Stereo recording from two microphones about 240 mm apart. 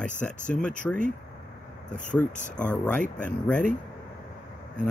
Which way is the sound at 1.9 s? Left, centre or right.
Left.